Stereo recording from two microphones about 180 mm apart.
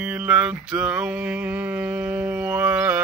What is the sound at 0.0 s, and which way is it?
Mantra, 5° right (ahead or behind).